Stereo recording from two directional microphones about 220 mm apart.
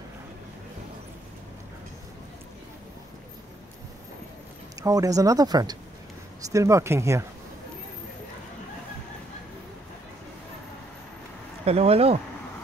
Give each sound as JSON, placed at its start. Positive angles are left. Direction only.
{"t": 4.8, "sound": "speech", "side_deg": -15}
{"t": 11.6, "sound": "speech", "side_deg": -25}